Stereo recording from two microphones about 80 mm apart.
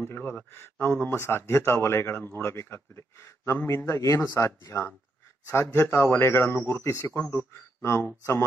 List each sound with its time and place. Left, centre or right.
0.0 s a man's voice: left
7.1 s a man's voice: left